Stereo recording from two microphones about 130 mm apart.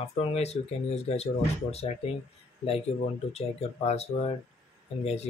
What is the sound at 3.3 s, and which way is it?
Speech, 55° left (ahead or behind).